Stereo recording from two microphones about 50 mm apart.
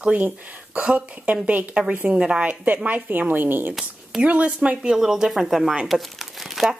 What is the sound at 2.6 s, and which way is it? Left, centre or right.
A woman's voice, right.